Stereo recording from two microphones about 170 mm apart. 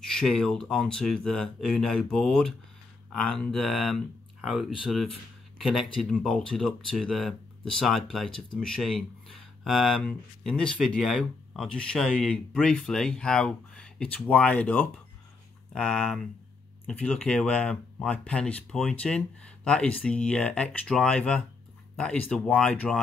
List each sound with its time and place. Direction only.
0.1 s speech: 5° left (ahead or behind)